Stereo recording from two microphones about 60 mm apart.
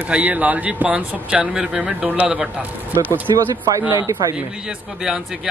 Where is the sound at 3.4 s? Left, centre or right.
Right.